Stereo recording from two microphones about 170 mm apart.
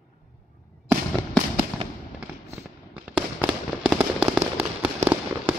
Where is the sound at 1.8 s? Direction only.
35° right (ahead or behind).